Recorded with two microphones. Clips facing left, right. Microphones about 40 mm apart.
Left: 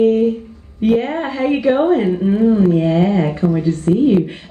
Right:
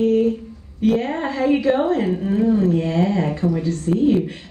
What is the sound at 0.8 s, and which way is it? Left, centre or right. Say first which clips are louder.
A woman's voice: left 3 dB; centre.